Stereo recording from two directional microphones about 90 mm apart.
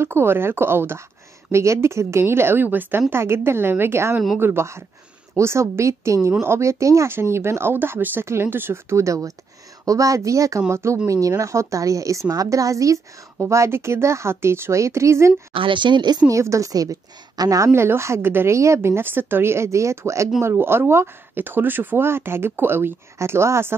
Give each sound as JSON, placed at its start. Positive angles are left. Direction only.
{"t": 0.0, "sound": "a woman's voice", "side_deg": -25}
{"t": 15.5, "sound": "speech", "side_deg": -70}
{"t": 16.3, "sound": "a woman's voice", "side_deg": -35}